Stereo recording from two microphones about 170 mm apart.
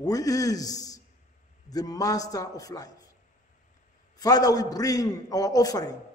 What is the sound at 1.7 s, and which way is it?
A man's voice, 20° left (ahead or behind).